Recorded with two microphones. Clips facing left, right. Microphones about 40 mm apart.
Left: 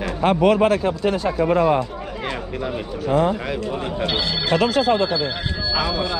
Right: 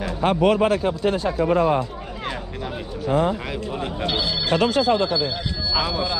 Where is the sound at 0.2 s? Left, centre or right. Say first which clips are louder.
Left 2 dB; left.